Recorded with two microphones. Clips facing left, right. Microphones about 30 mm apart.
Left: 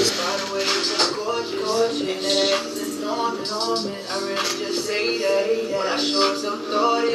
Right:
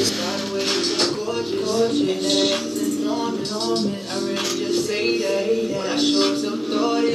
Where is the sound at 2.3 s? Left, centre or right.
Left.